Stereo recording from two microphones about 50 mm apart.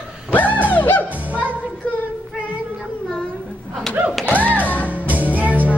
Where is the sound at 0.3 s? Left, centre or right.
Left.